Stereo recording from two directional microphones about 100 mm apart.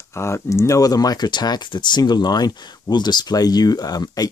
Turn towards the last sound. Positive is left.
turn(degrees=40)  # may be behind; listen again after turning